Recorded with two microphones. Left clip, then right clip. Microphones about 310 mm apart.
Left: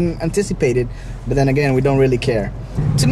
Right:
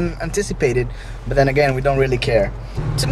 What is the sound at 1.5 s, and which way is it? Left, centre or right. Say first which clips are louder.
Speech: even; right.